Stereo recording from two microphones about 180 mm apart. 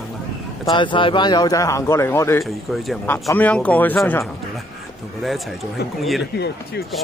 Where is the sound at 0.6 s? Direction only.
25° left (ahead or behind); by 4.3 s 10° left (ahead or behind).